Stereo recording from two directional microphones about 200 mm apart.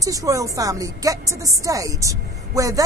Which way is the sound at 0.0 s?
15° right (ahead or behind).